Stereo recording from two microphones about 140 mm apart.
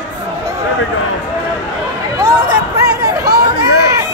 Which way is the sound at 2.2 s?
25° right (ahead or behind).